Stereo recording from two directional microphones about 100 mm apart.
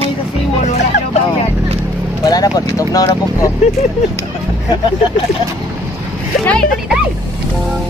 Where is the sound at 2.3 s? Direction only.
40° left (ahead or behind).